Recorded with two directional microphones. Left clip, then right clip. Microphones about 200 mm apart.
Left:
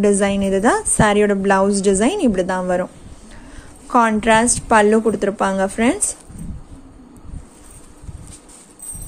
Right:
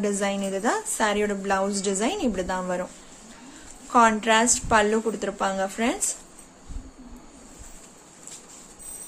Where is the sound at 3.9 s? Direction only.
30° left (ahead or behind).